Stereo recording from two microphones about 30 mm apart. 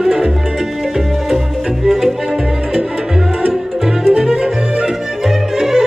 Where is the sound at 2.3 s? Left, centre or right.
Right.